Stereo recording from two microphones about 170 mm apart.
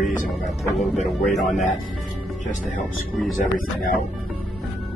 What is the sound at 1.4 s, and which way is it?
Speech, 45° left (ahead or behind).